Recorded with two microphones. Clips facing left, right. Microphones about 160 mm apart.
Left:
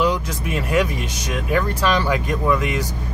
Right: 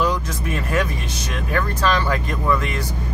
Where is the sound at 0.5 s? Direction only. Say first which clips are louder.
Left 3 dB; 15° left (ahead or behind).